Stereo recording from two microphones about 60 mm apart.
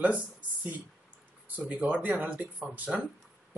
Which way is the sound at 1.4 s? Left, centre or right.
Right.